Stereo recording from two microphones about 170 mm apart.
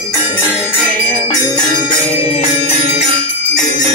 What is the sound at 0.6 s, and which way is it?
Jingle bell, 10° left (ahead or behind).